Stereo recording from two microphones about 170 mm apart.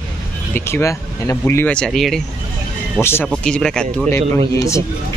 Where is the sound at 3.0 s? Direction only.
15° left (ahead or behind).